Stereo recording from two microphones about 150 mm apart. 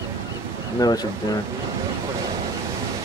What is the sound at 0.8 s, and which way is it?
Speech, 30° left (ahead or behind).